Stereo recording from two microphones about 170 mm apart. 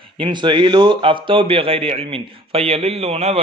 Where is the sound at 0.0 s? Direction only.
30° right (ahead or behind).